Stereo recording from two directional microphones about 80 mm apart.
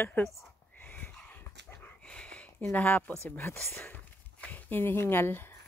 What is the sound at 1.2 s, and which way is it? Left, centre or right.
Dog, left.